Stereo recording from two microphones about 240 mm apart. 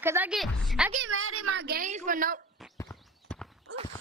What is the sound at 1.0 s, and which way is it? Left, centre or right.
A child's voice, right.